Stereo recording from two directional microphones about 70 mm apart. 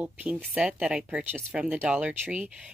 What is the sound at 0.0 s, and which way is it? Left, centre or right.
Speech, right.